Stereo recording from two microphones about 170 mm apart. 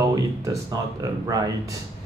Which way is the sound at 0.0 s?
20° right (ahead or behind).